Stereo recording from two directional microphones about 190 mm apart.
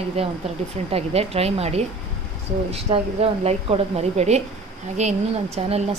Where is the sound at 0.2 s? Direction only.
30° right (ahead or behind).